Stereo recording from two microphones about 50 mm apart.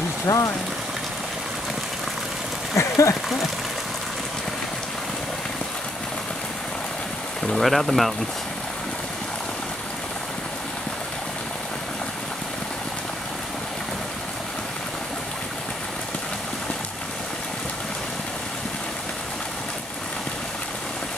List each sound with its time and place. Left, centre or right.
0.3 s speech: left
2.7 s a sound: left
7.4 s speech: centre